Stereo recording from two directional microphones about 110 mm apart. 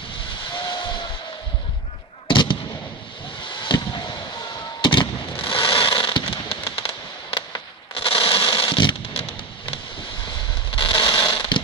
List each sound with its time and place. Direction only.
0.7 s hiss: 45° left (ahead or behind)
2.2 s fireworks: 45° left (ahead or behind)
3.4 s vehicle: 45° left (ahead or behind)
4.8 s fireworks: 50° left (ahead or behind)
7.9 s a sound: 55° left (ahead or behind)
9.1 s music: 70° left (ahead or behind)
10.7 s fireworks: 50° left (ahead or behind)